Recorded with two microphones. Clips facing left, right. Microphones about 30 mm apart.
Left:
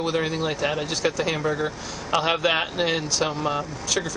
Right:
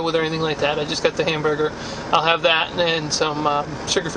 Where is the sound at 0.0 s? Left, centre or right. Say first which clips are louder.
Right 4 dB; right.